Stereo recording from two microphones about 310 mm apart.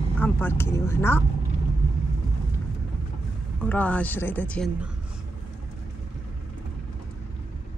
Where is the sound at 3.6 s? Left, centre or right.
Centre.